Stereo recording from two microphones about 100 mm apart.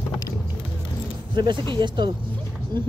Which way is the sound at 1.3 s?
50° right (ahead or behind).